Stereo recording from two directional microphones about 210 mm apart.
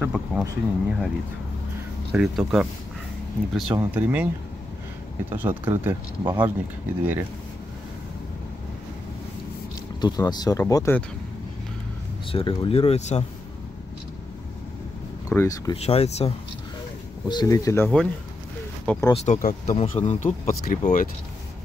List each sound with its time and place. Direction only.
0.0 s speech: 5° right (ahead or behind)
2.1 s speech: 5° right (ahead or behind)
3.9 s speech: 5° right (ahead or behind)
5.3 s speech: 10° right (ahead or behind)
9.9 s speech: 20° left (ahead or behind)
12.3 s speech: 25° left (ahead or behind)
15.2 s speech: 15° left (ahead or behind)
15.8 s speech: 30° left (ahead or behind)
17.3 s speech: 20° left (ahead or behind)
19.1 s speech: 35° left (ahead or behind)